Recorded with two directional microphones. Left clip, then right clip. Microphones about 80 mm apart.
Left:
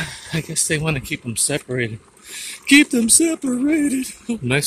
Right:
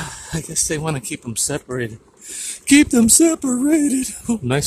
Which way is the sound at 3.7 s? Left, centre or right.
Right.